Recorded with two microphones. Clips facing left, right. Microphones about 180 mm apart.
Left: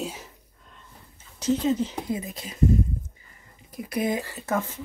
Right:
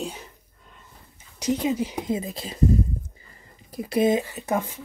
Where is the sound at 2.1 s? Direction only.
30° right (ahead or behind).